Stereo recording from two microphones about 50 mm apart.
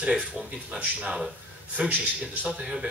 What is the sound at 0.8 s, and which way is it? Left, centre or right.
Speech, right.